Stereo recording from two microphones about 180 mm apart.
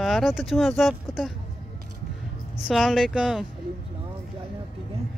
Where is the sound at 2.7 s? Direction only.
Centre (ahead or behind).